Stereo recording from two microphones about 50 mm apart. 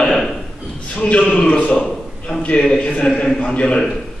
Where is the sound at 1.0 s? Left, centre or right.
Left.